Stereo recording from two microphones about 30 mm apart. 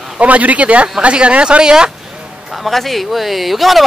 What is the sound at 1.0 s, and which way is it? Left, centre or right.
Speech, right.